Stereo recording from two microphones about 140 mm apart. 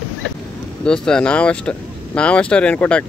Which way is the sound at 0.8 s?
5° left (ahead or behind).